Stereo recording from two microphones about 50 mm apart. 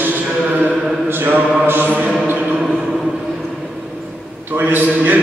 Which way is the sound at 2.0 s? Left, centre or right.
Centre.